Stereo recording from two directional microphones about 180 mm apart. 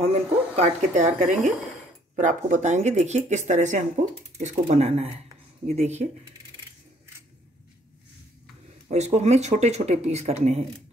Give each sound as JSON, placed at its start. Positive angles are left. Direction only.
{"t": 0.0, "sound": "speech", "side_deg": -35}
{"t": 8.8, "sound": "speech", "side_deg": -40}